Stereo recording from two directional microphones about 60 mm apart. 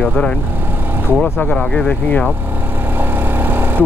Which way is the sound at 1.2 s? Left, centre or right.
Left.